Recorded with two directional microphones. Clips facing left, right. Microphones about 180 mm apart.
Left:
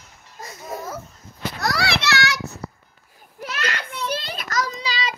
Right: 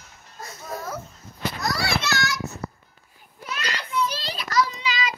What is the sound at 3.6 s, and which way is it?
Child singing, 55° left (ahead or behind).